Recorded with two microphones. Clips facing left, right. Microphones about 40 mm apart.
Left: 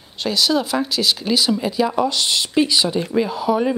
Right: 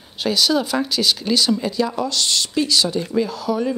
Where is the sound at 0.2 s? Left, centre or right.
Centre.